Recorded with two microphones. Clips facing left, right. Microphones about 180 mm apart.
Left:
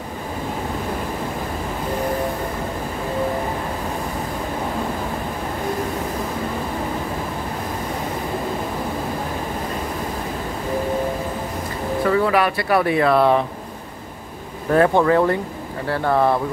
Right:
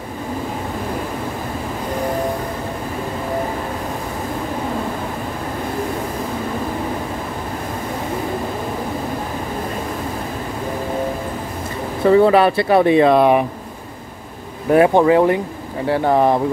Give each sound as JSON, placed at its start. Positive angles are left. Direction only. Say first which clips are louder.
{"t": 12.0, "sound": "speech", "louder": "right 7 dB", "side_deg": -25}
{"t": 14.7, "sound": "speech", "louder": "right 3 dB", "side_deg": -15}